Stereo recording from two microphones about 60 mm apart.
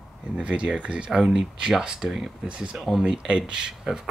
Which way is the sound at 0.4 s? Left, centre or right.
Centre.